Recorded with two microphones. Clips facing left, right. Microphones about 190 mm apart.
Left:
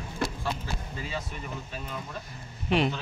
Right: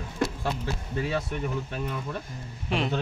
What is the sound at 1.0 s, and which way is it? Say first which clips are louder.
Speech: right 11 dB; 65° right (ahead or behind).